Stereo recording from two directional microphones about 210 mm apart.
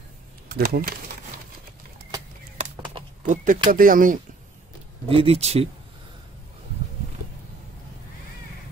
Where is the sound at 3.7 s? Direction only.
40° right (ahead or behind).